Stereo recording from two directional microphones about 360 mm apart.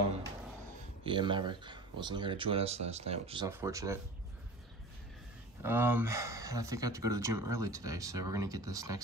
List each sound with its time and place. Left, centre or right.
1.0 s speech: centre
5.6 s speech: centre